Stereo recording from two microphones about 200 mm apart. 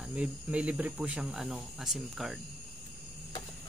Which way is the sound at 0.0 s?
5° right (ahead or behind).